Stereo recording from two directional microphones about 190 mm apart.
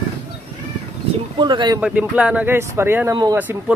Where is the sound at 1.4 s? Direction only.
25° right (ahead or behind).